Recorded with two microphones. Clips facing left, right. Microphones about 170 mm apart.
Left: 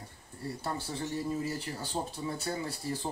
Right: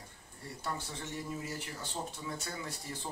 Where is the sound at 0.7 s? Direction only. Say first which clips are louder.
Left 4 dB; 35° left (ahead or behind).